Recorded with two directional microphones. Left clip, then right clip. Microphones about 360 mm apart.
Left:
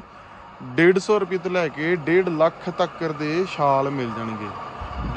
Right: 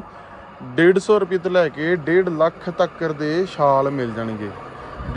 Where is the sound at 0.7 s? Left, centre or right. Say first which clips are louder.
Right 3 dB; centre.